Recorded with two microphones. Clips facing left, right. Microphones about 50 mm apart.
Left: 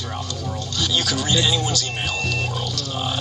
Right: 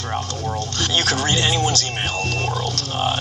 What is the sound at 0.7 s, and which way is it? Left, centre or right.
Speech, right.